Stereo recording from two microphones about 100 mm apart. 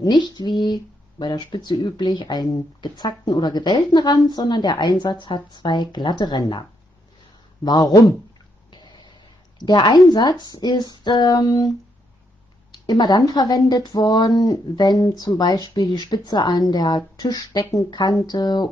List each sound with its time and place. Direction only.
0.0 s speech: 45° left (ahead or behind)
7.6 s speech: 40° left (ahead or behind)
8.7 s a sound: 45° left (ahead or behind)
9.6 s speech: 45° left (ahead or behind)
12.7 s speech: 45° left (ahead or behind)